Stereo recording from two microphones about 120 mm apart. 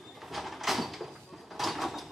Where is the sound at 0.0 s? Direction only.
Centre (ahead or behind).